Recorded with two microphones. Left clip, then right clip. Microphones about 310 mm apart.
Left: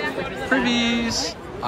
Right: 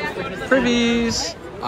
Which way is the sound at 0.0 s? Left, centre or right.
Left.